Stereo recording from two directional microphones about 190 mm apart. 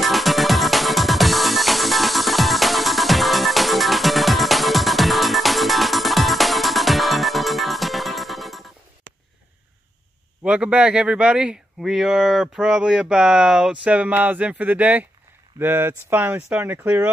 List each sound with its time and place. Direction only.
0.0 s music: centre (ahead or behind)
9.1 s a sound: 70° right (ahead or behind)
10.4 s speech: 5° right (ahead or behind)